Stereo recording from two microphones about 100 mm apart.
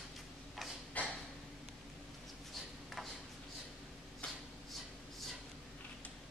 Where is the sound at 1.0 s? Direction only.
15° left (ahead or behind).